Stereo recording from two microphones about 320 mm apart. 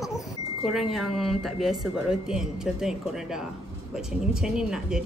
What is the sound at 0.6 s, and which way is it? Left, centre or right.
Speech, centre.